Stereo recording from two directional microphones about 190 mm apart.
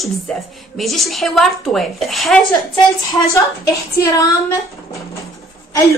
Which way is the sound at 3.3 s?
15° left (ahead or behind).